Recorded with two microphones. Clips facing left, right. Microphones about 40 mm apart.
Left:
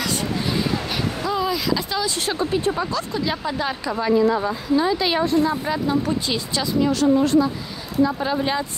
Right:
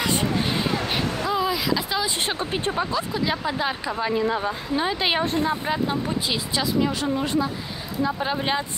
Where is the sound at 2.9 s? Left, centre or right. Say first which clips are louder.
Even; centre.